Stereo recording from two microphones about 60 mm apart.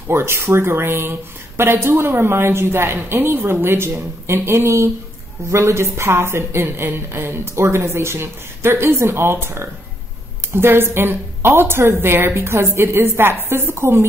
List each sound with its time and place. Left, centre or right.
0.1 s a woman's voice: right